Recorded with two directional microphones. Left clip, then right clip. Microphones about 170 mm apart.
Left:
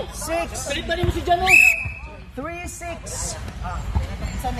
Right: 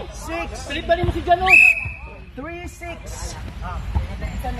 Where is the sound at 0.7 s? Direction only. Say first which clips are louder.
Right 6 dB; 40° right (ahead or behind).